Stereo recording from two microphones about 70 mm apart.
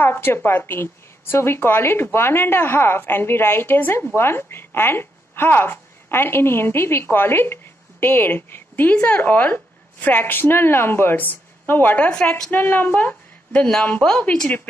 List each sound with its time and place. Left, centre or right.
0.0 s a woman's voice: left; by 14.5 s centre